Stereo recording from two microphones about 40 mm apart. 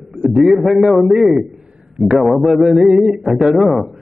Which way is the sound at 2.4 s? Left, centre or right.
Centre.